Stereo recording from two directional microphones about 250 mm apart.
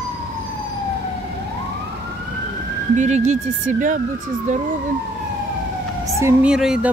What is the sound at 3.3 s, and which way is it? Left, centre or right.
Speech, right.